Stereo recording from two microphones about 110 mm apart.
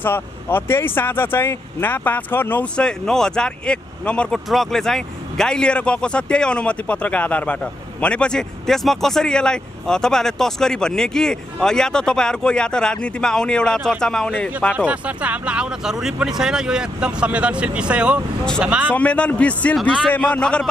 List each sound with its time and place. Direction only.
0.0 s speech: 20° left (ahead or behind)
14.9 s speech: 10° right (ahead or behind)
18.9 s speech: 10° left (ahead or behind)